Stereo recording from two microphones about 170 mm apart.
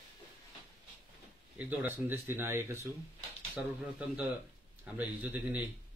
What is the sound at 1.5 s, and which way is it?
Speech, 10° right (ahead or behind).